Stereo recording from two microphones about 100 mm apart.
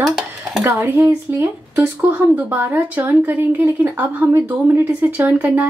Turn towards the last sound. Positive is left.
turn(degrees=-20)  # may be behind; listen again after turning